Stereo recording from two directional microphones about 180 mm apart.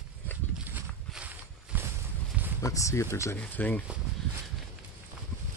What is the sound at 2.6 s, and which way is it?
Speech, 15° left (ahead or behind).